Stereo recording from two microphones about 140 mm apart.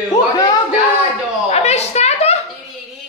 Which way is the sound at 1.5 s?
50° left (ahead or behind).